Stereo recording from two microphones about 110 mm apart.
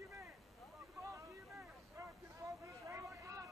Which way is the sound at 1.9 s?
25° right (ahead or behind).